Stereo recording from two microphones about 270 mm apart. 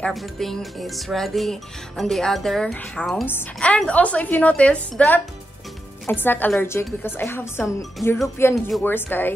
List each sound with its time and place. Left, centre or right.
0.0 s a woman's voice: centre